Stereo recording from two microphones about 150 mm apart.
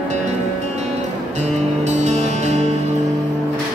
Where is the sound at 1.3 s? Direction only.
50° right (ahead or behind).